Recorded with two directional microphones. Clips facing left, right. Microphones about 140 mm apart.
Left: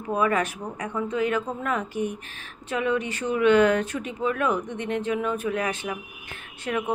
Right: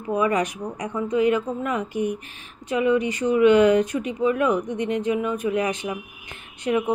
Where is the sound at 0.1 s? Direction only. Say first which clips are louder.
Right 2 dB; 15° right (ahead or behind).